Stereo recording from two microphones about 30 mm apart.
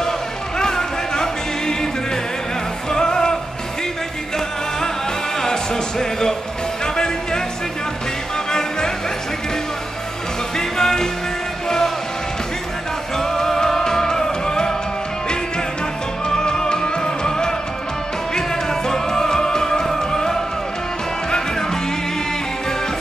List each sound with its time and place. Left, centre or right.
0.6 s music: left
2.9 s music: left
5.4 s music: centre
8.5 s music: left
10.6 s music: centre
13.2 s music: centre
16.3 s music: left